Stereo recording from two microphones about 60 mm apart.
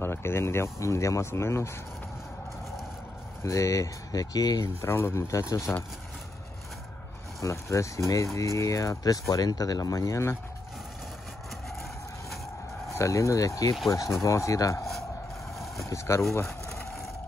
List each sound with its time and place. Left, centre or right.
0.0 s speech: left
3.4 s speech: left
4.8 s speech: left
5.3 s speech: left
7.3 s speech: left
9.3 s speech: left
12.9 s speech: left
15.9 s speech: left